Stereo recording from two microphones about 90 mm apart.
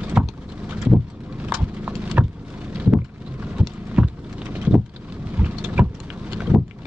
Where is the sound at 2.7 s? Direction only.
15° right (ahead or behind).